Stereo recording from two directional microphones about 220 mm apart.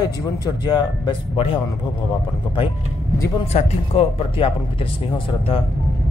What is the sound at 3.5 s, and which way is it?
A man's voice, 25° left (ahead or behind).